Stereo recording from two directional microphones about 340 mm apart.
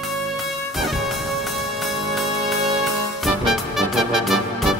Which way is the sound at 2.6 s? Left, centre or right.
Centre.